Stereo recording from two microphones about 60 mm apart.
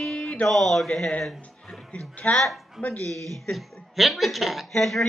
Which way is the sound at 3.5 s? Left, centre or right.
Centre.